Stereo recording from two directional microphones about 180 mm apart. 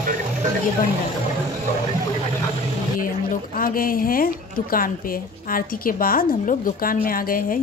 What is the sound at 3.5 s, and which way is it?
A woman's voice, 55° left (ahead or behind).